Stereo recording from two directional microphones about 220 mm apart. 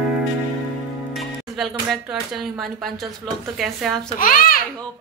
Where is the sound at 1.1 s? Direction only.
Centre (ahead or behind).